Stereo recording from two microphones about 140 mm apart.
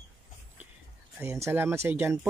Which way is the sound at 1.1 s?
20° right (ahead or behind).